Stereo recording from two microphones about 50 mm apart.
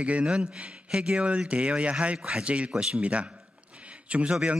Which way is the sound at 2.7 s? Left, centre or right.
Centre.